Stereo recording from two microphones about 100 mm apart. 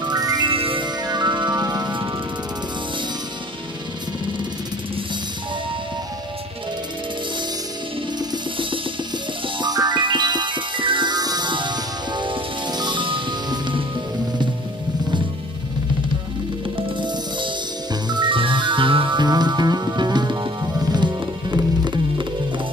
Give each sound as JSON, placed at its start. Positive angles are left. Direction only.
{"t": 0.0, "sound": "music", "side_deg": -40}
{"t": 0.5, "sound": "music", "side_deg": -65}
{"t": 1.0, "sound": "music", "side_deg": -45}
{"t": 9.6, "sound": "music", "side_deg": -45}
{"t": 18.1, "sound": "music", "side_deg": -55}